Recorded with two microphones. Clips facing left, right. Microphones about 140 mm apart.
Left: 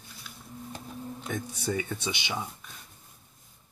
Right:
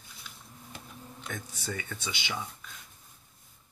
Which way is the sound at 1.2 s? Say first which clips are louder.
Left 6 dB; 20° left (ahead or behind).